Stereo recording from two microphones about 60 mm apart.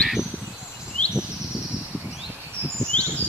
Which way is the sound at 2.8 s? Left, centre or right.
Right.